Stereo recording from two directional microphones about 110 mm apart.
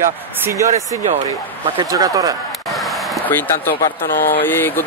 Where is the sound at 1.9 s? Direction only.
35° right (ahead or behind).